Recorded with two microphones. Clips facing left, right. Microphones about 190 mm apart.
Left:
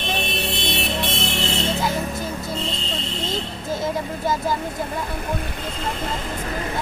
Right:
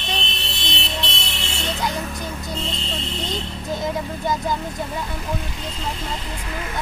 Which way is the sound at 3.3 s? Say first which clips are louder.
Left 2 dB; centre (ahead or behind).